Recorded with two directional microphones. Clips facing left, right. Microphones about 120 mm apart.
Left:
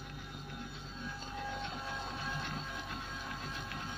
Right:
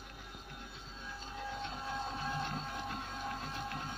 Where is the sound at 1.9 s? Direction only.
35° right (ahead or behind).